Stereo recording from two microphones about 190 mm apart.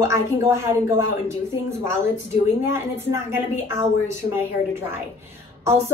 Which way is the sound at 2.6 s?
15° right (ahead or behind).